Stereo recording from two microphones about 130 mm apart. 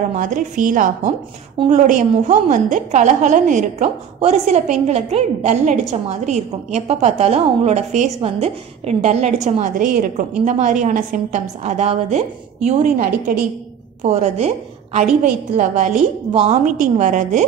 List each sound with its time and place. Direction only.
0.1 s a woman's voice: 80° right
10.4 s a woman's voice: 70° right (ahead or behind); by 13.5 s 90° right
14.0 s a woman's voice: 60° right (ahead or behind)
15.2 s a woman's voice: 70° right (ahead or behind)
16.3 s a woman's voice: 50° right (ahead or behind)
16.6 s a woman's voice: 75° right (ahead or behind)